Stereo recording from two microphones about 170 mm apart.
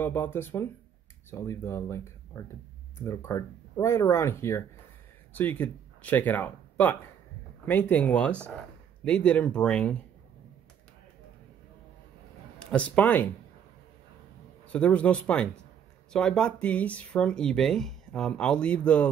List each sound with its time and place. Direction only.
0.0 s speech: 10° left (ahead or behind)
12.5 s speech: 10° left (ahead or behind)
14.7 s speech: 10° left (ahead or behind)